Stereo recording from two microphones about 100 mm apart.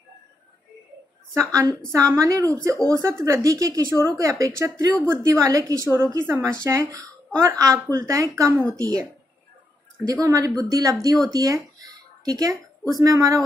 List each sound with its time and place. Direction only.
1.3 s a woman's voice: 30° right (ahead or behind)
10.2 s a woman's voice: 40° right (ahead or behind)